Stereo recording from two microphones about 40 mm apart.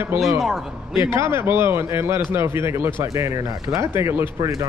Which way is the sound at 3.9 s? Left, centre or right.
Right.